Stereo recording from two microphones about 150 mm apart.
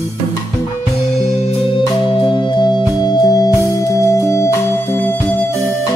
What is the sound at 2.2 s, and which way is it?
Music, 30° left (ahead or behind).